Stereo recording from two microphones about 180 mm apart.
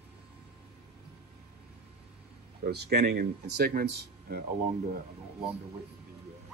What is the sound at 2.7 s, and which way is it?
Speech, 65° right (ahead or behind).